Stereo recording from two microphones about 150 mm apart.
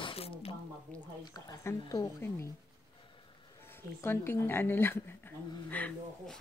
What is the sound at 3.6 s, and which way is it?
Speech, 15° left (ahead or behind).